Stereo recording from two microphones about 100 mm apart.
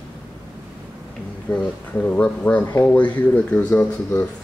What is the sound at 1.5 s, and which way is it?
Speech, 15° left (ahead or behind).